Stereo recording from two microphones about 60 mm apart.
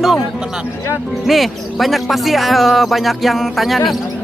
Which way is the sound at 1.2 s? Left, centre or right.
Centre.